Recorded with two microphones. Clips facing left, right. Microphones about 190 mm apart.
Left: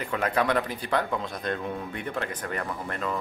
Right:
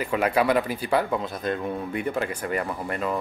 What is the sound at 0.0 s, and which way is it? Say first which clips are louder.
Speech: right 4 dB; 10° right (ahead or behind).